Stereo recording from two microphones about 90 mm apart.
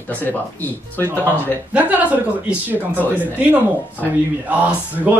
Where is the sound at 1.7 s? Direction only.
20° right (ahead or behind).